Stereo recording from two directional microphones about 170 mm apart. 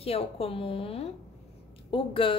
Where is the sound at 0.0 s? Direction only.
35° left (ahead or behind).